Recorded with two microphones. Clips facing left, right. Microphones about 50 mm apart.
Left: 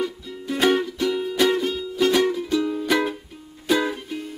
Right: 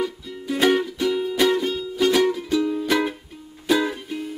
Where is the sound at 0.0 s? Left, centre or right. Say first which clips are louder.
Right 1 dB; centre.